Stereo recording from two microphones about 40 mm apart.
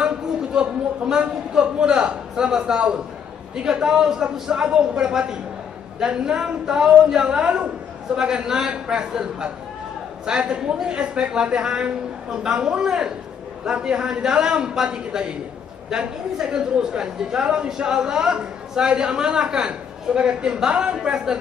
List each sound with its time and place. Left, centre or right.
0.0 s a man's voice: centre